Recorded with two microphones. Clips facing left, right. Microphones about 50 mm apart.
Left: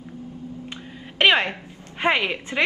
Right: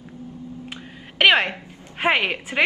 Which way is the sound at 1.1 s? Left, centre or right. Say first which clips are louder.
Right 1 dB; centre.